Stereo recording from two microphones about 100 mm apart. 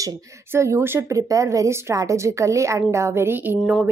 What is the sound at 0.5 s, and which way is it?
A woman's voice, 30° right (ahead or behind).